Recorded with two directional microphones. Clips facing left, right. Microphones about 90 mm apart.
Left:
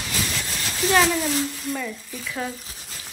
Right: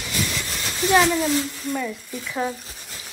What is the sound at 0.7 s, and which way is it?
Speech, centre (ahead or behind).